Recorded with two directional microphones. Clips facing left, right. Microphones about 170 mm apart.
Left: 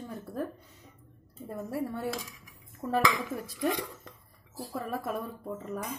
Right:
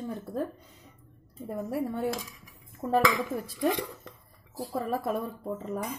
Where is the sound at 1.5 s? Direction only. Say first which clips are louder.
Right 3 dB; 20° right (ahead or behind).